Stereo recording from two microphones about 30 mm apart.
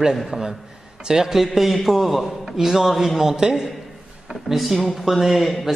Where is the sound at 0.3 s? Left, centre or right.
Centre.